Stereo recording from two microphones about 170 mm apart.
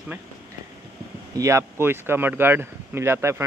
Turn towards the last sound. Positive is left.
turn(degrees=-15)  # may be behind; listen again after turning